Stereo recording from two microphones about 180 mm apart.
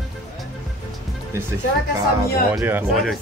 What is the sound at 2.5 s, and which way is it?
Speech, 10° right (ahead or behind).